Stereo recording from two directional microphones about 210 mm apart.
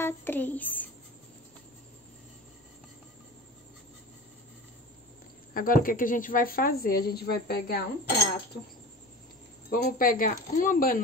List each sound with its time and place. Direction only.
0.0 s a woman's voice: 10° left (ahead or behind)
5.5 s a woman's voice: 40° left (ahead or behind)
9.7 s speech: 40° left (ahead or behind)